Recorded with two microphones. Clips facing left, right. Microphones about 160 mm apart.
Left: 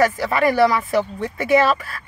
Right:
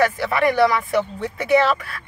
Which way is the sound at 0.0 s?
Centre (ahead or behind).